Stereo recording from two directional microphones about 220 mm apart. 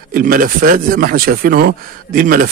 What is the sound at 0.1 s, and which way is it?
Speech, 40° right (ahead or behind).